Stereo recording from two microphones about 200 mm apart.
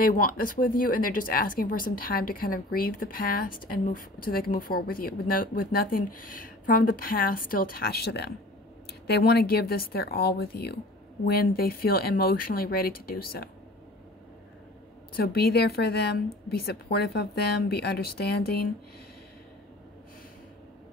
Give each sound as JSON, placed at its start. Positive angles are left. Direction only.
{"t": 0.0, "sound": "speech", "side_deg": 45}
{"t": 15.1, "sound": "speech", "side_deg": 50}